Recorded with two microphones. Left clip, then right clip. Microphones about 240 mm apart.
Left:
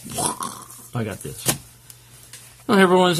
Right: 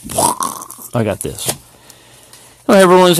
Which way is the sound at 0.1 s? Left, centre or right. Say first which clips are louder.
Right 11 dB; right.